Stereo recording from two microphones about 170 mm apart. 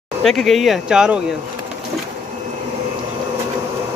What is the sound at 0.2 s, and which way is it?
Speech, centre (ahead or behind).